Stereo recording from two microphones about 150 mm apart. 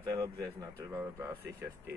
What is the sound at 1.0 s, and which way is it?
Speech, 15° right (ahead or behind).